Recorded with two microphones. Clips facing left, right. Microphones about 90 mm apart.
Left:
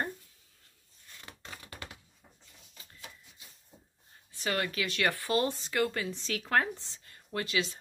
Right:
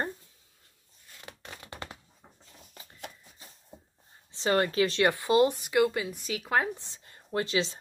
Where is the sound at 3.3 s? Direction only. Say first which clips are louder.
Right 4 dB; 35° right (ahead or behind).